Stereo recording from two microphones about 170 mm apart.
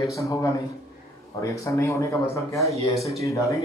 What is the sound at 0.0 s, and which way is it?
Speech, 20° left (ahead or behind).